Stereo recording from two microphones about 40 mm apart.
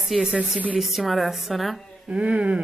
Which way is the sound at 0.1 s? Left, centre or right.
Centre.